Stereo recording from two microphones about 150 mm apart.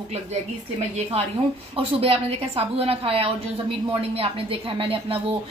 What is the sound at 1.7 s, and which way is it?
A woman's voice, 40° right (ahead or behind).